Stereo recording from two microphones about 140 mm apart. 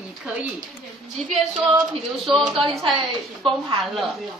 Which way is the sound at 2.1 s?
Centre (ahead or behind).